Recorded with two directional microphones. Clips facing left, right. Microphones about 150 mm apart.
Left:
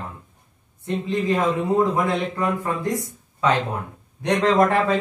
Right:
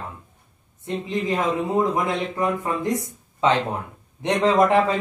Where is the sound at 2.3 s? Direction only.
20° right (ahead or behind).